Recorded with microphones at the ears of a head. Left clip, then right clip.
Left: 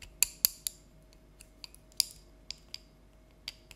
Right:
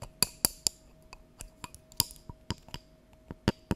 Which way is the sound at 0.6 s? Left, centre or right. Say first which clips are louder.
Right 10 dB; right.